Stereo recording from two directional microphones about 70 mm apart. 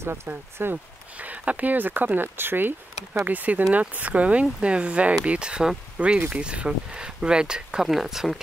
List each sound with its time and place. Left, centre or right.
0.0 s speech: right
1.2 s speech: centre